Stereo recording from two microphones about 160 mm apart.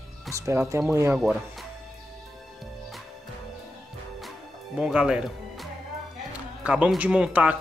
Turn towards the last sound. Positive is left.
turn(degrees=-5)  # may be behind; listen again after turning